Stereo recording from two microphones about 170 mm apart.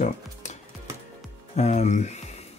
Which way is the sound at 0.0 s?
45° left (ahead or behind).